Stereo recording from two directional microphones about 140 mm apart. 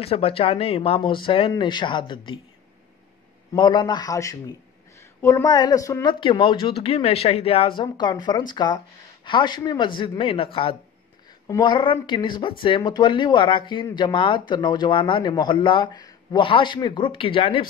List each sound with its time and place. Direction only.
0.0 s speech: 45° left (ahead or behind)
3.5 s speech: 30° left (ahead or behind)
6.1 s speech: 35° left (ahead or behind)
11.4 s speech: 30° left (ahead or behind)